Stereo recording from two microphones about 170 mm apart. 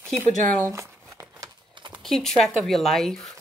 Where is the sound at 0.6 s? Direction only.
15° right (ahead or behind).